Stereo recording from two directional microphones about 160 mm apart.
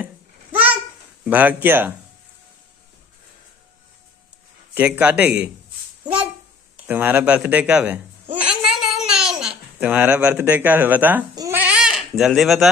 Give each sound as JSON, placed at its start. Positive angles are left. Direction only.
{"t": 1.2, "sound": "speech", "side_deg": -10}
{"t": 4.7, "sound": "speech", "side_deg": -10}
{"t": 6.9, "sound": "speech", "side_deg": -10}
{"t": 11.3, "sound": "goat", "side_deg": -15}